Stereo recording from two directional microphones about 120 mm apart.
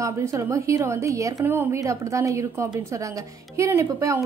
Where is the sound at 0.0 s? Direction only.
25° right (ahead or behind).